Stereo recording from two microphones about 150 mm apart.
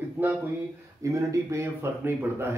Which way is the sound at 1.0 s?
20° right (ahead or behind).